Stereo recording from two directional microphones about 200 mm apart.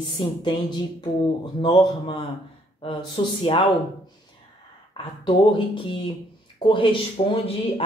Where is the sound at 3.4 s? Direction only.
25° left (ahead or behind).